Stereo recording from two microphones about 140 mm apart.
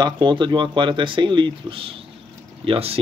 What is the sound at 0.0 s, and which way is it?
Speech, 35° right (ahead or behind).